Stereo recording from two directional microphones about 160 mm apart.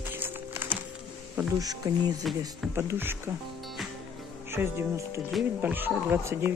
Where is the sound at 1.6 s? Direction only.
25° right (ahead or behind).